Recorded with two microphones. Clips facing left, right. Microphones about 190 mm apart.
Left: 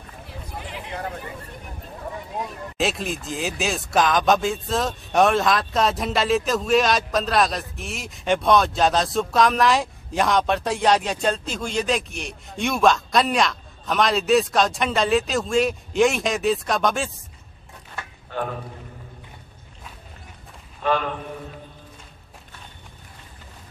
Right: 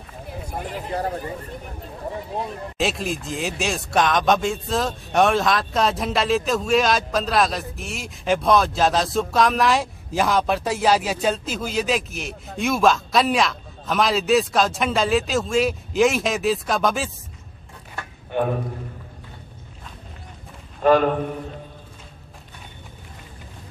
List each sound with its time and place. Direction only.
0.5 s a sound: 45° right (ahead or behind)
2.8 s a man's voice: centre (ahead or behind)
20.8 s a man's voice: 45° right (ahead or behind)